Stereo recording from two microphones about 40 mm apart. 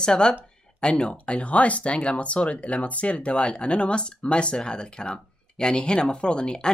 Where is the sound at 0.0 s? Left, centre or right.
Left.